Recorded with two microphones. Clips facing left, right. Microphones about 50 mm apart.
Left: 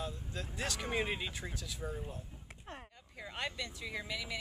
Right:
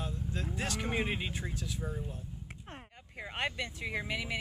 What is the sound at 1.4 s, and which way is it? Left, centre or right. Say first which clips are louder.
Speech: right 3 dB; centre.